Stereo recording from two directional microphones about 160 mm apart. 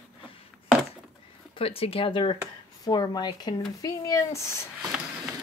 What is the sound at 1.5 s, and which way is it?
Speech, 35° left (ahead or behind).